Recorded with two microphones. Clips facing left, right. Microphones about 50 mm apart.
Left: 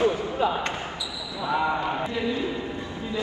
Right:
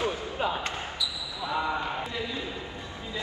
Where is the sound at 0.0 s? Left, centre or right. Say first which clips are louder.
Left 7 dB; left.